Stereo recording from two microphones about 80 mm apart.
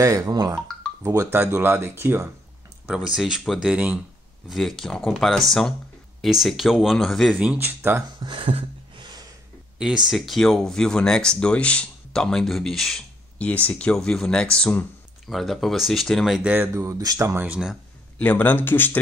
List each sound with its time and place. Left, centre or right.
0.0 s speech: right
1.3 s speech: right
3.1 s speech: centre
4.5 s speech: centre
7.3 s speech: right
8.2 s a sound: right
9.8 s speech: centre
13.4 s speech: centre
13.9 s speech: centre
16.4 s speech: right
16.7 s speech: right
18.2 s speech: left